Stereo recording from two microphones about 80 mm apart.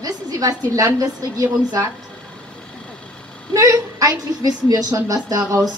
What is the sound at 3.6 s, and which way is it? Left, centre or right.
A woman's voice, right.